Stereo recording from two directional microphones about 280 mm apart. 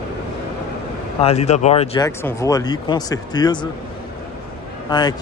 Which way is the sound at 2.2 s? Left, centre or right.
Centre.